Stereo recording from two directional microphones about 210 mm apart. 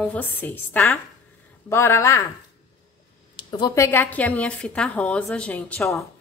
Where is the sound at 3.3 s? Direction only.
20° left (ahead or behind); by 6.0 s centre (ahead or behind).